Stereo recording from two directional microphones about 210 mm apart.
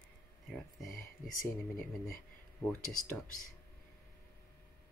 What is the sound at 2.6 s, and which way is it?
Speech, 5° left (ahead or behind).